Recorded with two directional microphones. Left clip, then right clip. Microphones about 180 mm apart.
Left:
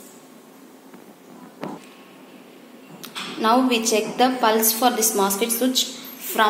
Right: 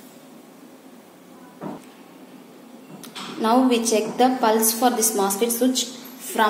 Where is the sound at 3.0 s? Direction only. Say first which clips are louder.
Left 2 dB; 10° right (ahead or behind).